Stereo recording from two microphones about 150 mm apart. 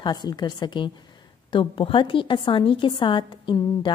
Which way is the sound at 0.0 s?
30° left (ahead or behind).